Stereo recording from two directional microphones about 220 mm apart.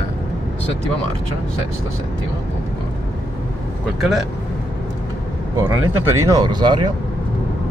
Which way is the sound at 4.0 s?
Centre (ahead or behind).